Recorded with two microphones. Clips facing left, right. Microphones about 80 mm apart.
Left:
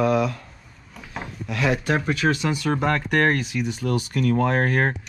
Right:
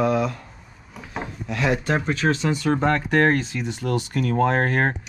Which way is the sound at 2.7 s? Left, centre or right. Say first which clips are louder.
Right 2 dB; right.